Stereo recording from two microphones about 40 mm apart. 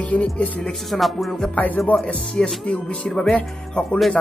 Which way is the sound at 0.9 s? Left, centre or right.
Centre.